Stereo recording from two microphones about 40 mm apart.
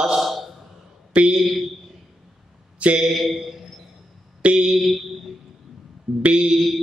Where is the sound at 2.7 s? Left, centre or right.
Right.